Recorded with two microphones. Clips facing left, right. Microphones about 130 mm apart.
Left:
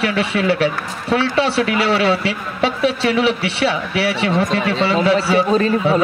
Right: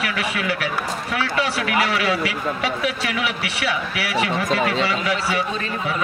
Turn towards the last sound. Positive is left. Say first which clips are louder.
# left 11 dB
turn(degrees=30)  # may be behind; listen again after turning